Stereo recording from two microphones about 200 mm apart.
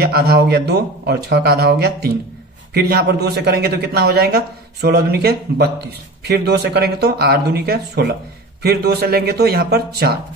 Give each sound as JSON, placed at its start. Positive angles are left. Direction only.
{"t": 0.0, "sound": "speech", "side_deg": -50}